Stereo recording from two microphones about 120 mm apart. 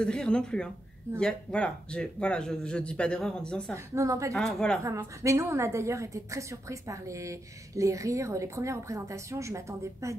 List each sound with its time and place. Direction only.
0.0 s speech: 5° left (ahead or behind)
3.7 s a woman's voice: 25° right (ahead or behind)
4.3 s speech: 5° left (ahead or behind)
4.8 s a woman's voice: 25° right (ahead or behind)